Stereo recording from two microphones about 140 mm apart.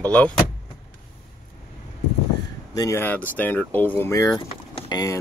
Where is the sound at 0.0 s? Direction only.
10° left (ahead or behind).